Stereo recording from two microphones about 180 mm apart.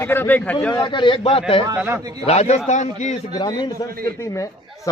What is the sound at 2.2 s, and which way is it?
Speech, 35° left (ahead or behind).